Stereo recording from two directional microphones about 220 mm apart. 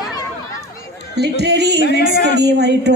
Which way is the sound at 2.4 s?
50° right (ahead or behind).